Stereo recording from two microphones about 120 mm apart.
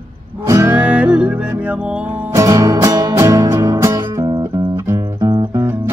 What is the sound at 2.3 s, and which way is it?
Music, 25° right (ahead or behind).